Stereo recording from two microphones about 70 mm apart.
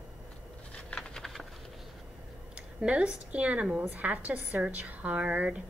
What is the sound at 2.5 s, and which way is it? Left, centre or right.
Speech, centre.